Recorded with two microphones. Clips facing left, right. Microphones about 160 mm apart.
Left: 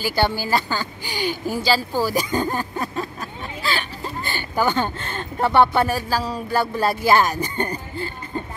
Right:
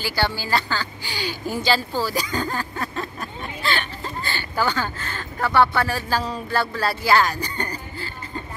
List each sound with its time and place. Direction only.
0.1 s speech: 15° left (ahead or behind)
4.2 s speech: 15° left (ahead or behind)
6.0 s speech: 5° left (ahead or behind)